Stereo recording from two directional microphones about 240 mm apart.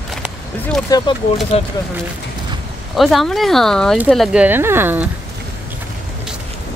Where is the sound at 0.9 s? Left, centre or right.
Centre.